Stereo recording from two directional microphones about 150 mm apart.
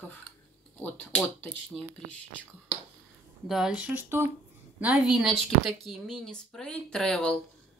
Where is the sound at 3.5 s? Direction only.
5° right (ahead or behind).